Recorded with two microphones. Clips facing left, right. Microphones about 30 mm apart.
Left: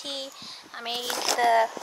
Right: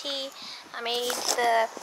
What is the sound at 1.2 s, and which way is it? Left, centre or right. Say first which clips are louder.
Speech: left 4 dB; left.